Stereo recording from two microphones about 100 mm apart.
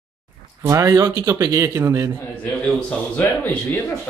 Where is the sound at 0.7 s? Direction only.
35° right (ahead or behind).